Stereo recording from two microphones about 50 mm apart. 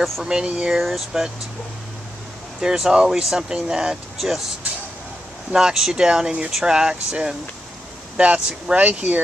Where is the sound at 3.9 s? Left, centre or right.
Centre.